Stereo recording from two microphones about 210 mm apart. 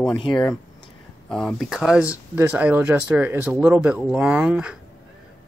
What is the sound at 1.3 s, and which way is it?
Speech, centre (ahead or behind).